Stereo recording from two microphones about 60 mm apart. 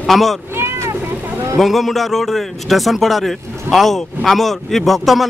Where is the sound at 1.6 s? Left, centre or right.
Centre.